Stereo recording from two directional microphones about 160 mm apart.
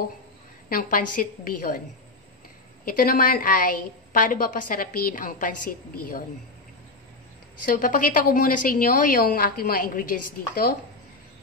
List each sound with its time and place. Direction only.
0.7 s a woman's voice: 60° left (ahead or behind)
2.8 s a woman's voice: 65° left (ahead or behind)
7.6 s a woman's voice: 60° left (ahead or behind)
10.5 s a woman's voice: 70° left (ahead or behind)